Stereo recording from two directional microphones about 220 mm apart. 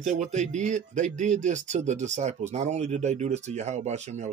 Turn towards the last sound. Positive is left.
turn(degrees=-30)  # may be behind; listen again after turning